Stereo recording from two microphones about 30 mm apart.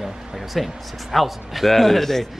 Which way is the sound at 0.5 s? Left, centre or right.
Centre.